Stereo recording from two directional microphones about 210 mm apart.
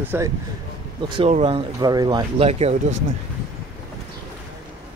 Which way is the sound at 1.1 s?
25° right (ahead or behind).